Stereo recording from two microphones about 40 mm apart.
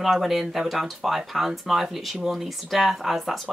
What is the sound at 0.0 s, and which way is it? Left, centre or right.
A woman's voice, centre.